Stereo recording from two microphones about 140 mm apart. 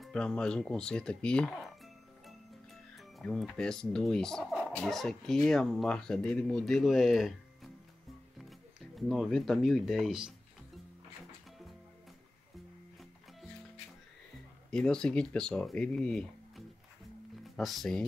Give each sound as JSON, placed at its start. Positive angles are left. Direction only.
{"t": 0.0, "sound": "speech", "side_deg": 5}
{"t": 14.7, "sound": "speech", "side_deg": 5}